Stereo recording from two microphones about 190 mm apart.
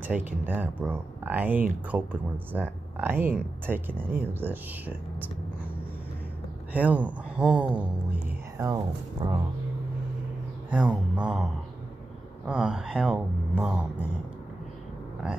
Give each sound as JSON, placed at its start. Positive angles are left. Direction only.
{"t": 0.0, "sound": "speech", "side_deg": -10}
{"t": 6.7, "sound": "speech", "side_deg": -10}
{"t": 8.1, "sound": "whispering", "side_deg": -10}
{"t": 9.2, "sound": "speech", "side_deg": -20}
{"t": 10.7, "sound": "speech", "side_deg": -5}
{"t": 12.4, "sound": "speech", "side_deg": -5}